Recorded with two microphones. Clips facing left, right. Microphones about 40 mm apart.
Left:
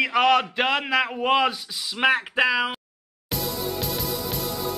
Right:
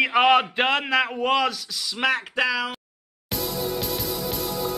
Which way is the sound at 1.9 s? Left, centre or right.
Centre.